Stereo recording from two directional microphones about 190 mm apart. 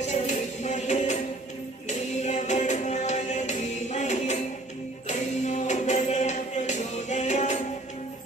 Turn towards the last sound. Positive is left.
turn(degrees=40)  # may be behind; listen again after turning